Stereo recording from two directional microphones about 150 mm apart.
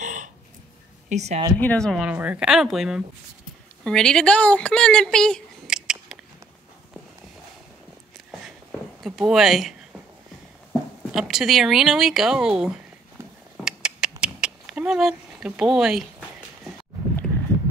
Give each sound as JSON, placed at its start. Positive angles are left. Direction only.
{"t": 0.0, "sound": "a sound", "side_deg": -60}
{"t": 1.0, "sound": "speech", "side_deg": -50}
{"t": 1.6, "sound": "speech", "side_deg": 10}
{"t": 2.0, "sound": "speech", "side_deg": -10}
{"t": 9.0, "sound": "speech", "side_deg": 0}
{"t": 13.7, "sound": "a sound", "side_deg": -5}